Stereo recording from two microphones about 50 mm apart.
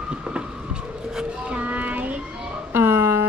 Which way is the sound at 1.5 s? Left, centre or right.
Right.